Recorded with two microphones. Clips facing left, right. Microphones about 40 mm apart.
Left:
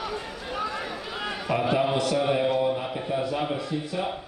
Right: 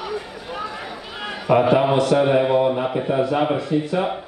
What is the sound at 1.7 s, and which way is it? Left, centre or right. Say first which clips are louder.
A man's voice: right 7 dB; right.